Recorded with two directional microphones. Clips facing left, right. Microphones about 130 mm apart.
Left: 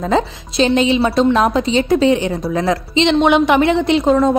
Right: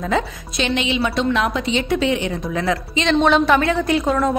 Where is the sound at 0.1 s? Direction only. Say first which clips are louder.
Left 5 dB; 35° left (ahead or behind).